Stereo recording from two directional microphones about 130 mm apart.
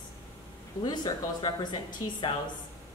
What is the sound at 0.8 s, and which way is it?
Speech, 35° left (ahead or behind).